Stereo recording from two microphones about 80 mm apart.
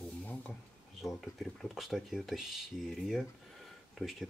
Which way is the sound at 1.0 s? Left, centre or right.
Centre.